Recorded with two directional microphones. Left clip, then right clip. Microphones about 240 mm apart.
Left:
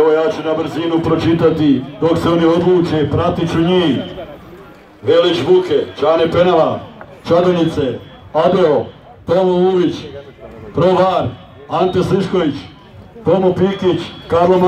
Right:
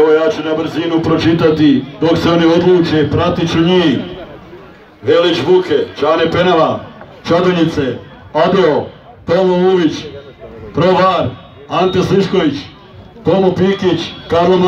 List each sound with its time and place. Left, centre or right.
0.0 s a man's voice: right
5.0 s a man's voice: right